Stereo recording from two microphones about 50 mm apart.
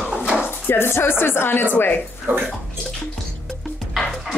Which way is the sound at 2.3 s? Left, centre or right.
Right.